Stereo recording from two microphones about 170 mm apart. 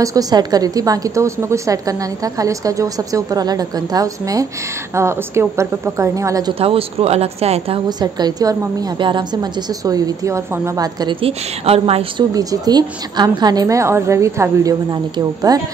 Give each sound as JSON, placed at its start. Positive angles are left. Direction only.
{"t": 0.0, "sound": "a woman's voice", "side_deg": -20}
{"t": 6.6, "sound": "a woman's voice", "side_deg": -35}
{"t": 12.4, "sound": "a woman's voice", "side_deg": -20}